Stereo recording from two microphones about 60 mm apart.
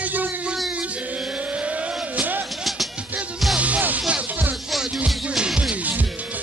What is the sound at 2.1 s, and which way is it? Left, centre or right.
Music, right.